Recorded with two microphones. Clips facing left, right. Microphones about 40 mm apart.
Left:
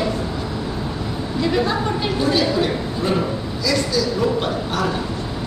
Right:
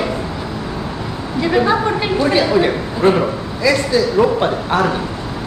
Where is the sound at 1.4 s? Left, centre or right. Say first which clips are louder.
Right 5 dB; right.